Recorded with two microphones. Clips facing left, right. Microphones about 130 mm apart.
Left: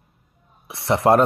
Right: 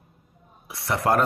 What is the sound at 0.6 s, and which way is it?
Speech, 25° left (ahead or behind).